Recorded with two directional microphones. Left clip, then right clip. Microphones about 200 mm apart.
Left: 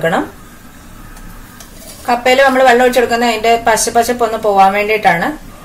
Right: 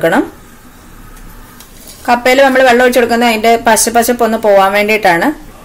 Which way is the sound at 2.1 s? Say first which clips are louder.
Right 2 dB; 50° right (ahead or behind).